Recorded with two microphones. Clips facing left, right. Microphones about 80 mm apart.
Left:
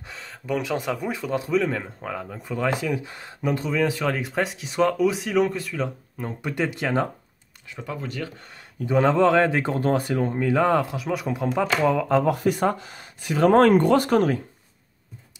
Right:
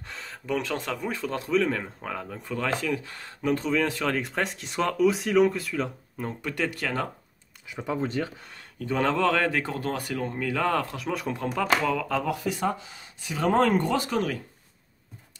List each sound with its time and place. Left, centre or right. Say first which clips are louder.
0.0 s speech: left 1 dB; centre
3.5 s speech: left 3 dB; centre
6.4 s speech: left 4 dB; centre
7.7 s speech: right 4 dB; centre
8.7 s speech: left 6 dB; centre
10.9 s speech: left 3 dB; centre
11.4 s speech: left 4 dB; left
12.3 s speech: left 6 dB; left